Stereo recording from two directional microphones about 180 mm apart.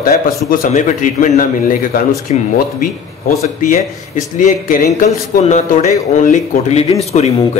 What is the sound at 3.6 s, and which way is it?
A man's voice, 45° left (ahead or behind).